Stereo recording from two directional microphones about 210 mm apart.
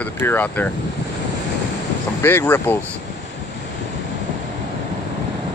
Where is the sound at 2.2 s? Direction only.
10° left (ahead or behind).